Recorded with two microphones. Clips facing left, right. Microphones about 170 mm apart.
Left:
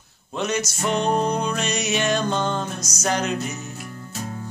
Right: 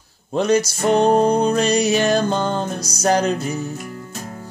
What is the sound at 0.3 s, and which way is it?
Music, 35° right (ahead or behind).